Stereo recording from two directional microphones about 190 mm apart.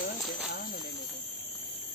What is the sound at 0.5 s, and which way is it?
Snake, 50° left (ahead or behind).